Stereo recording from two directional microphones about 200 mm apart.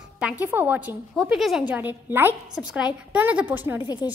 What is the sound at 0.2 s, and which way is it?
A child's voice, 10° right (ahead or behind).